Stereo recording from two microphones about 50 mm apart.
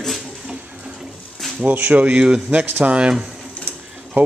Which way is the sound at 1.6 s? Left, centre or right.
Right.